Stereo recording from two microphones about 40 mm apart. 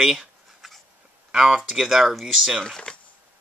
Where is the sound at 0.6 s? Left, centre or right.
Centre.